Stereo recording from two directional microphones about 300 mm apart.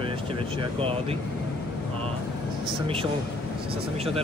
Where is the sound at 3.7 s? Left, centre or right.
Centre.